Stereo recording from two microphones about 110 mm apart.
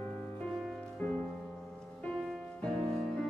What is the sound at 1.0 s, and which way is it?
Music, 15° left (ahead or behind).